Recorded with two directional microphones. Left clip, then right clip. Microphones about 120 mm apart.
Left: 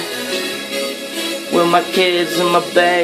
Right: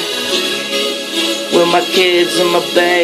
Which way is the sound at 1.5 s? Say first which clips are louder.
Right 2 dB; 25° left (ahead or behind).